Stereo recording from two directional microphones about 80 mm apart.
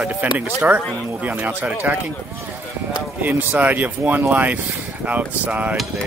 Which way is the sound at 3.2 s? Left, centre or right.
Centre.